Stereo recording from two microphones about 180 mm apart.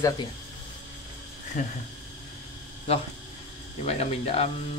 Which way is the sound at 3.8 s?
35° left (ahead or behind).